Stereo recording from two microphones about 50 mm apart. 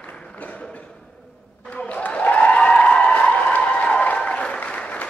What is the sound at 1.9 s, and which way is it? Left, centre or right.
Applause, left.